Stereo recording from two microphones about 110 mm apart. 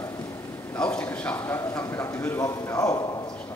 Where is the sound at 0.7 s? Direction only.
10° left (ahead or behind).